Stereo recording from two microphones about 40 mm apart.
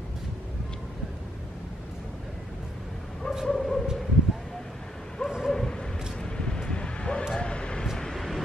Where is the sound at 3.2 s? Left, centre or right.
Centre.